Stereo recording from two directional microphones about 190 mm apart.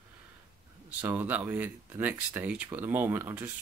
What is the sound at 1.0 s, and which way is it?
Speech, 10° right (ahead or behind).